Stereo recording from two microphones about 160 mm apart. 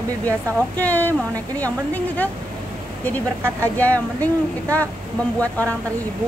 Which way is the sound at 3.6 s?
10° left (ahead or behind).